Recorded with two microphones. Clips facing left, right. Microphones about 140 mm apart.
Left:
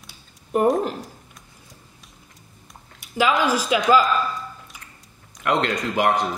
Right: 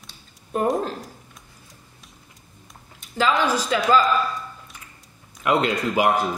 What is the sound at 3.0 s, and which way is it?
Speech, 5° left (ahead or behind).